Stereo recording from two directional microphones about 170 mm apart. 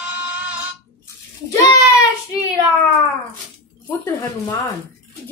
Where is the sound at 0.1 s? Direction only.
10° right (ahead or behind).